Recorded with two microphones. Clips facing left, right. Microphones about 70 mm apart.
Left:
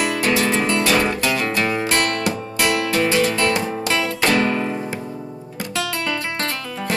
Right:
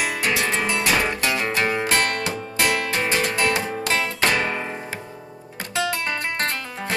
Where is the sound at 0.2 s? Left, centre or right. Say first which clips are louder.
Left 4 dB; centre.